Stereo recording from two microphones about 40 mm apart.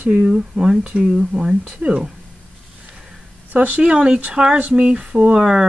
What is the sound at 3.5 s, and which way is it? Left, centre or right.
Speech, right.